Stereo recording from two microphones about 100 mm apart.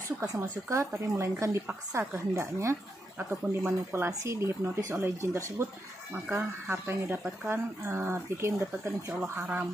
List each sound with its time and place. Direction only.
0.4 s speech: 30° right (ahead or behind)
9.4 s speech: 10° right (ahead or behind)